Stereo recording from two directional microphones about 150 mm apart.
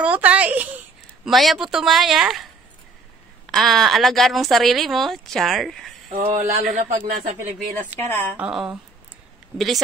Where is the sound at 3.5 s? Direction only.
Centre (ahead or behind).